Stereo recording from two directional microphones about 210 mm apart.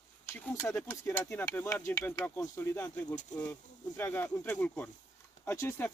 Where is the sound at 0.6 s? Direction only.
10° left (ahead or behind).